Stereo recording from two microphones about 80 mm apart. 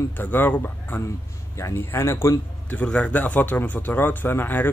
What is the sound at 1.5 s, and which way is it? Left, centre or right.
Speech, left.